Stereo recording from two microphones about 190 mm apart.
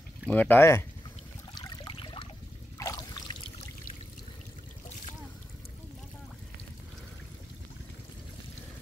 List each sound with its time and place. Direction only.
0.3 s speech: 10° left (ahead or behind)
1.5 s a sound: 20° left (ahead or behind)
2.8 s trickle: 20° left (ahead or behind)